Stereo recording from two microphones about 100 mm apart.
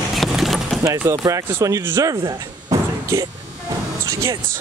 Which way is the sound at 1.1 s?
35° right (ahead or behind).